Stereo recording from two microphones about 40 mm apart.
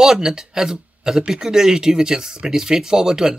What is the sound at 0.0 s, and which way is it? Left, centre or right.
Speech, centre.